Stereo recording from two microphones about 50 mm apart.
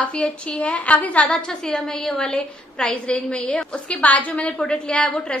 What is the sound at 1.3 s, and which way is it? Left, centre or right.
A woman's voice, centre.